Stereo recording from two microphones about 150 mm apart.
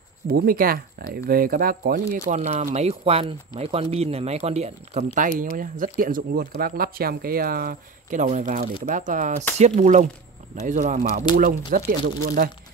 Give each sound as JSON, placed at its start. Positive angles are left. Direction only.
{"t": 0.3, "sound": "speech", "side_deg": -80}
{"t": 2.3, "sound": "speech", "side_deg": -50}
{"t": 5.1, "sound": "speech", "side_deg": -65}
{"t": 11.3, "sound": "speech", "side_deg": -70}